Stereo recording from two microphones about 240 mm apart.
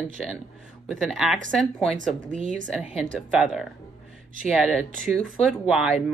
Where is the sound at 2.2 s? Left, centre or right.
Right.